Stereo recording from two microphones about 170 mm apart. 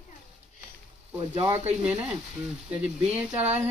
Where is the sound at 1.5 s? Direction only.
40° right (ahead or behind).